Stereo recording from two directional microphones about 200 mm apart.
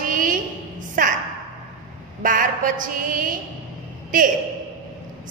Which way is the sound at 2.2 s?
40° right (ahead or behind).